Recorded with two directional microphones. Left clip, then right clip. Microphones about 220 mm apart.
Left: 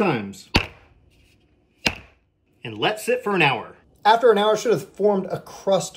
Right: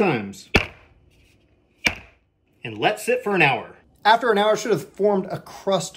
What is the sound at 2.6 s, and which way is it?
Speech, centre (ahead or behind).